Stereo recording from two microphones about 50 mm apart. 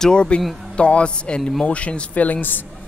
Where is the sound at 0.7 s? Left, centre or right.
Left.